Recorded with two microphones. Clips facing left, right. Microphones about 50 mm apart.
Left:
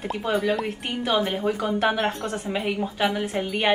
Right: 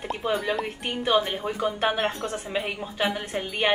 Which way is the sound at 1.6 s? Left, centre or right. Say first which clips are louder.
Right 1 dB; right.